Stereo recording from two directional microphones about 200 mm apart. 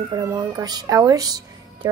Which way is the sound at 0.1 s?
15° right (ahead or behind).